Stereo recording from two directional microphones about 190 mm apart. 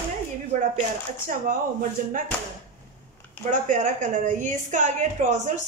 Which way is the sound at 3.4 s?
40° right (ahead or behind).